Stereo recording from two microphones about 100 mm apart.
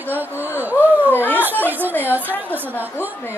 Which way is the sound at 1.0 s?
20° left (ahead or behind).